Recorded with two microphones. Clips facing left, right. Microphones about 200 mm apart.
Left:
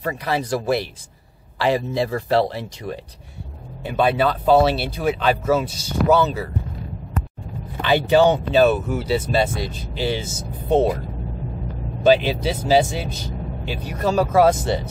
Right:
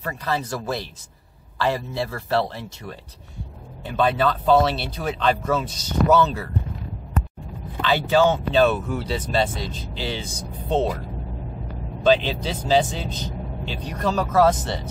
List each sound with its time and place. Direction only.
0.0 s speech: 15° left (ahead or behind)
7.8 s speech: 15° left (ahead or behind)
12.0 s speech: 10° left (ahead or behind)